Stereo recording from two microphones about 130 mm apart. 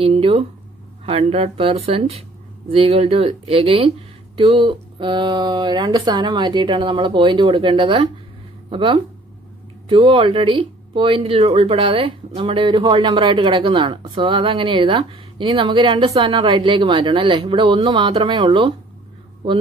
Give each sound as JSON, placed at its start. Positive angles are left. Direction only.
{"t": 0.0, "sound": "speech", "side_deg": -45}